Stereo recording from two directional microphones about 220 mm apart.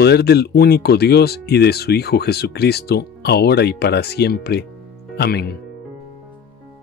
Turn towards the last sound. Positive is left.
turn(degrees=45)  # may be behind; listen again after turning